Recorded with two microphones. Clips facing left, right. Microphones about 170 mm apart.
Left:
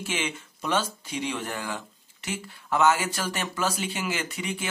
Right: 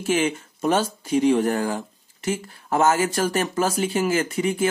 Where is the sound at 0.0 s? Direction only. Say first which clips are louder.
Right 10 dB; 45° right (ahead or behind).